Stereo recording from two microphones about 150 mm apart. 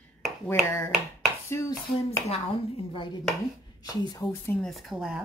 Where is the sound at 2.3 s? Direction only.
35° left (ahead or behind).